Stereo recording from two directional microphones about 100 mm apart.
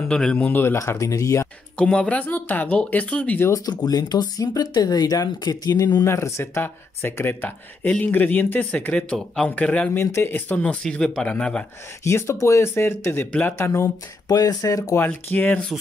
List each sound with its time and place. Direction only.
0.1 s speech: 10° left (ahead or behind)
0.5 s speech: 20° left (ahead or behind)
1.8 s speech: 10° left (ahead or behind)
3.4 s speech: 35° left (ahead or behind)
6.0 s speech: 30° left (ahead or behind); by 9.9 s 10° left (ahead or behind)
9.9 s speech: 25° left (ahead or behind)
12.0 s speech: 30° left (ahead or behind)
13.7 s speech: 30° left (ahead or behind)
15.2 s speech: 20° left (ahead or behind)